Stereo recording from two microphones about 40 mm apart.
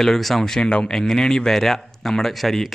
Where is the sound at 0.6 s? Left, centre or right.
Left.